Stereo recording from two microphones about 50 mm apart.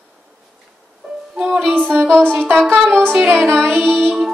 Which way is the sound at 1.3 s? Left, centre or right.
Centre.